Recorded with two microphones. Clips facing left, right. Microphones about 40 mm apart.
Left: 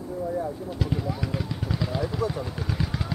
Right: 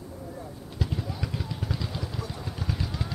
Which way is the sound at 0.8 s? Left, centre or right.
Centre.